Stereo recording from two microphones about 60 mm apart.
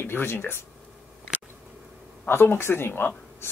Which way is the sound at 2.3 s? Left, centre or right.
Left.